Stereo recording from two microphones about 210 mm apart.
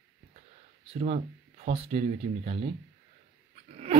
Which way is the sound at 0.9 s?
30° right (ahead or behind).